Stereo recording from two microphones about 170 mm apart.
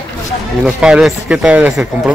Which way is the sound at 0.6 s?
5° right (ahead or behind).